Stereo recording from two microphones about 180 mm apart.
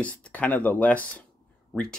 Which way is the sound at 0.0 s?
10° left (ahead or behind).